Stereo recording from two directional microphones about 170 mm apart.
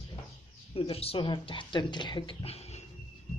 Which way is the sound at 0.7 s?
35° left (ahead or behind).